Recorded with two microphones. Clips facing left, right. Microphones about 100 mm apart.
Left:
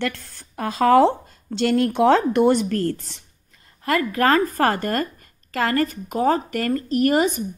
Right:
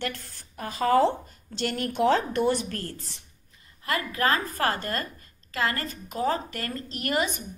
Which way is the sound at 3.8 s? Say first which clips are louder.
Left 7 dB; 45° left (ahead or behind).